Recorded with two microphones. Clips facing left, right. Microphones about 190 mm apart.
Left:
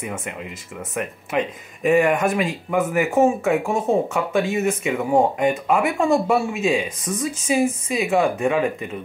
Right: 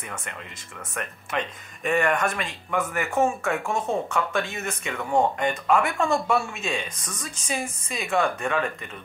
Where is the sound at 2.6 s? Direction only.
20° left (ahead or behind).